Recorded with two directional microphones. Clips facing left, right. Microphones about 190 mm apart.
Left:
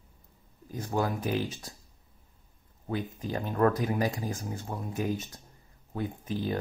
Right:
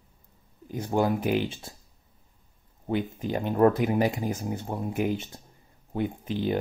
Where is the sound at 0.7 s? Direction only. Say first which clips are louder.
Right 5 dB; 25° right (ahead or behind).